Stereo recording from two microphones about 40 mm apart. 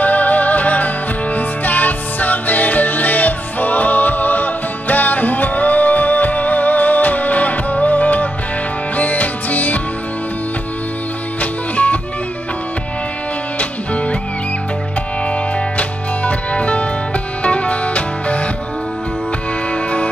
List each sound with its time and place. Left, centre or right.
0.0 s music: left
11.7 s music: left
13.6 s music: left
15.8 s music: left
19.7 s music: left